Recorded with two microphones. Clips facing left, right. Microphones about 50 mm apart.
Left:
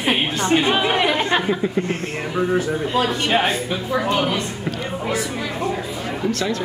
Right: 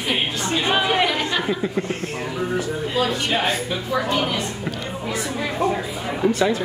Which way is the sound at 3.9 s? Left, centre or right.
Centre.